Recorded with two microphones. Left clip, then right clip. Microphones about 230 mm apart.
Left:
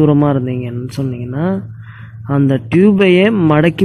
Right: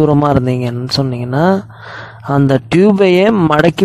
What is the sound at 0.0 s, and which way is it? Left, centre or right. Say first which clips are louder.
Speech: right 2 dB; right.